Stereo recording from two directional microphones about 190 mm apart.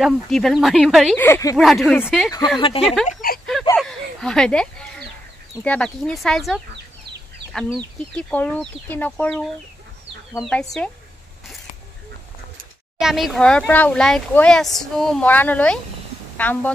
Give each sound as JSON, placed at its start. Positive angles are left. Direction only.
{"t": 0.0, "sound": "speech", "side_deg": 0}
{"t": 1.2, "sound": "speech", "side_deg": 15}
{"t": 1.6, "sound": "speech", "side_deg": 0}
{"t": 2.6, "sound": "speech", "side_deg": 30}
{"t": 3.1, "sound": "a sound", "side_deg": 45}
{"t": 3.7, "sound": "a sound", "side_deg": 5}
{"t": 5.6, "sound": "speech", "side_deg": 5}
{"t": 13.0, "sound": "speech", "side_deg": 0}